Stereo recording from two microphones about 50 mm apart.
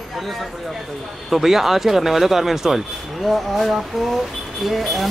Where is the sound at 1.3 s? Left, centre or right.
Centre.